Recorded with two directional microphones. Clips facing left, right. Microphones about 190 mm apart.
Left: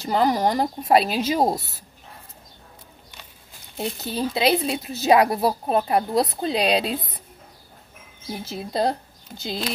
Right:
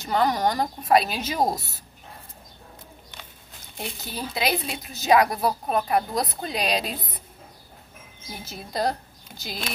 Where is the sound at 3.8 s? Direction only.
30° left (ahead or behind).